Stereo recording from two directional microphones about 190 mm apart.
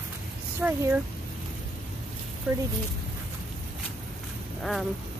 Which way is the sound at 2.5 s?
5° right (ahead or behind).